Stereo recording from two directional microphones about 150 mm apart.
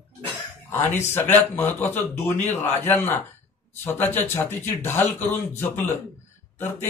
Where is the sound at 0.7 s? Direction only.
15° left (ahead or behind).